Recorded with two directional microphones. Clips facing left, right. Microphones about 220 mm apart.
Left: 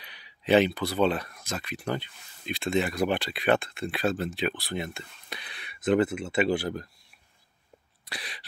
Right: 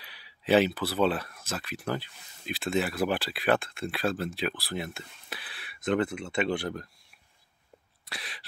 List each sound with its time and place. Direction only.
0.0 s speech: 5° right (ahead or behind)
8.1 s speech: centre (ahead or behind)